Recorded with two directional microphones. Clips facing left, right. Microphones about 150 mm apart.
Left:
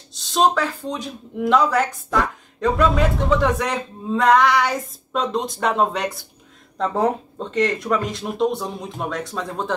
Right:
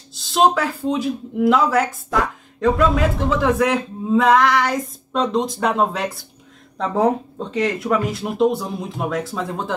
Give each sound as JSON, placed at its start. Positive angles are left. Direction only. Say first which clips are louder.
{"t": 0.1, "sound": "speech", "louder": "right 2 dB", "side_deg": 0}
{"t": 7.5, "sound": "speech", "louder": "right 1 dB", "side_deg": -5}